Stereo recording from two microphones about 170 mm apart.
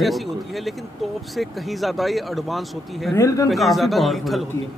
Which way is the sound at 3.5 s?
Centre (ahead or behind).